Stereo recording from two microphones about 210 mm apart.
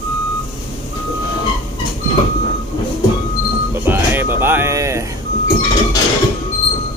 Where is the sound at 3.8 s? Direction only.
10° right (ahead or behind).